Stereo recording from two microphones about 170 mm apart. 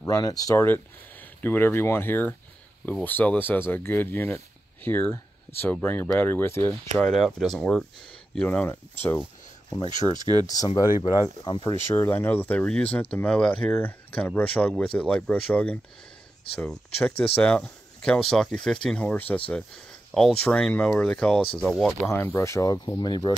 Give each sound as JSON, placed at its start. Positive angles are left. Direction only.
{"t": 0.0, "sound": "speech", "side_deg": 20}
{"t": 7.2, "sound": "speech", "side_deg": 0}
{"t": 9.8, "sound": "speech", "side_deg": -25}
{"t": 10.4, "sound": "speech", "side_deg": 20}
{"t": 11.9, "sound": "speech", "side_deg": 15}
{"t": 22.0, "sound": "speech", "side_deg": 15}